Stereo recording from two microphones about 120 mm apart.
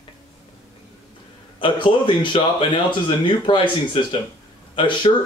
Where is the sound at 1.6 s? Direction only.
45° left (ahead or behind).